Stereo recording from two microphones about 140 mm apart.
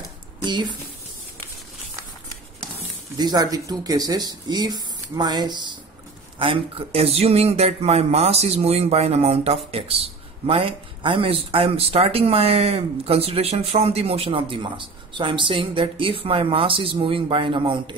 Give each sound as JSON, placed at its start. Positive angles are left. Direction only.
{"t": 0.5, "sound": "a woman's voice", "side_deg": -35}
{"t": 3.2, "sound": "speech", "side_deg": -30}
{"t": 6.3, "sound": "a sound", "side_deg": -40}